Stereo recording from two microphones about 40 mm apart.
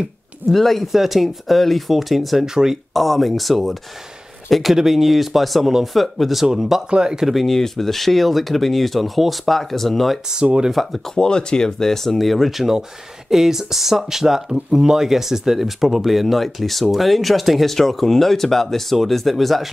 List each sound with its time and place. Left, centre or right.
0.6 s speech: centre
2.4 s speech: centre
2.9 s speech: centre
6.4 s speech: centre
7.2 s speech: centre
11.1 s speech: centre